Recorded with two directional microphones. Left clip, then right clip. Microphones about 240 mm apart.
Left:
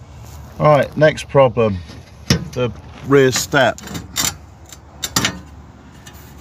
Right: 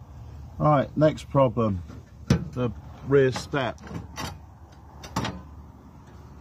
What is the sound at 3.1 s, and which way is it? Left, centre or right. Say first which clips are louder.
Speech: left 8 dB; left.